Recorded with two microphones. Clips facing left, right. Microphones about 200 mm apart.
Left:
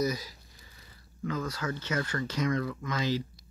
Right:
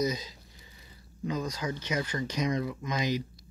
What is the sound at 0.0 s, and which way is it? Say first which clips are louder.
Speech: even; 20° right (ahead or behind).